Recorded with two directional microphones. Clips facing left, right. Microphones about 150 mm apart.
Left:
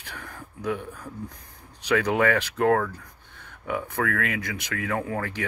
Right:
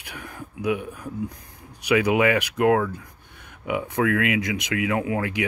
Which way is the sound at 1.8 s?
10° right (ahead or behind).